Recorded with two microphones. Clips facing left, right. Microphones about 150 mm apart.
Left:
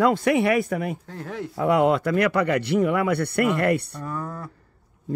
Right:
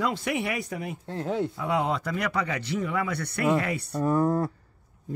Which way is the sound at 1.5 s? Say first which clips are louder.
Left 8 dB; 60° left (ahead or behind).